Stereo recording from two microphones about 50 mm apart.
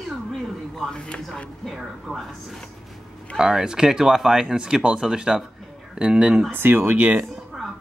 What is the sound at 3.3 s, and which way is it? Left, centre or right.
Speech, centre.